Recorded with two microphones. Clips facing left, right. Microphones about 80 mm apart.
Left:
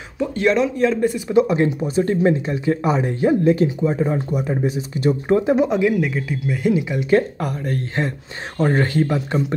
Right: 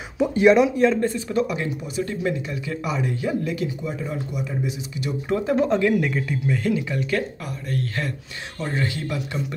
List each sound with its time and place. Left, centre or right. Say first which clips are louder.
0.2 s speech: right 2 dB; centre
1.1 s speech: left 8 dB; centre
1.5 s speech: left 9 dB; left
5.4 s speech: left 3 dB; centre
6.7 s speech: left 6 dB; centre
7.3 s speech: left 5 dB; left